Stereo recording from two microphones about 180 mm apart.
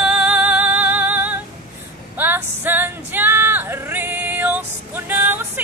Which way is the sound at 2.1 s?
10° right (ahead or behind).